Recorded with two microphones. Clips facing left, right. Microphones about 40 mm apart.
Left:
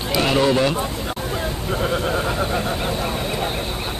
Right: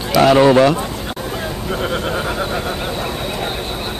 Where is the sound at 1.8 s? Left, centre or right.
Right.